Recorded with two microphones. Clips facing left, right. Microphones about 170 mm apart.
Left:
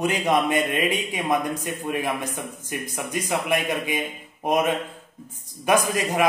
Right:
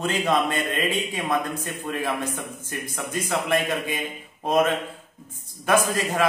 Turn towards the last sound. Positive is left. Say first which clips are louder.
# left 1 dB
turn(degrees=15)  # may be behind; listen again after turning